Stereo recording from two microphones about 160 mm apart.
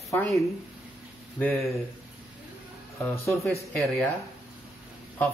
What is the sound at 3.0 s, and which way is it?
Speech, 20° left (ahead or behind).